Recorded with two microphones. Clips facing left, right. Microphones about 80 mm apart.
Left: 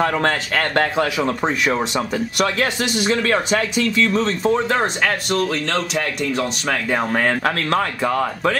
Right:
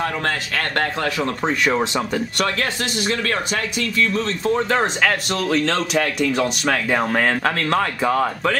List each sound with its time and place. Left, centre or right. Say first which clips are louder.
0.0 s speech: left 4 dB; left
0.9 s speech: left 3 dB; centre
2.3 s speech: left 5 dB; centre
4.6 s speech: even; centre